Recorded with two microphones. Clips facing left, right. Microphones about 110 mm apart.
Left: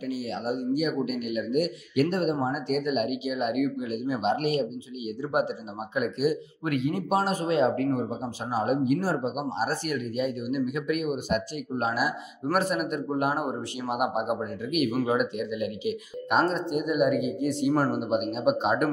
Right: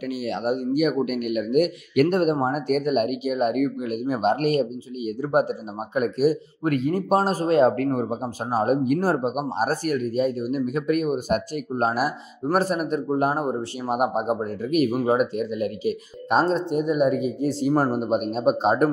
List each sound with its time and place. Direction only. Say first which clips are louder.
0.1 s a man's voice: right 5 dB; 70° right (ahead or behind); by 18.9 s 35° right (ahead or behind)